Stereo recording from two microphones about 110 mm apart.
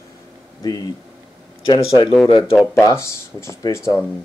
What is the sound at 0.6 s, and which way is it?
Speech, 35° left (ahead or behind).